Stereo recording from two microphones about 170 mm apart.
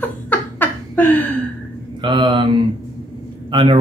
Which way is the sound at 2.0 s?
30° right (ahead or behind).